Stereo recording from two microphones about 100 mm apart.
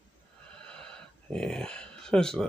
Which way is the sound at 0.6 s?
10° left (ahead or behind).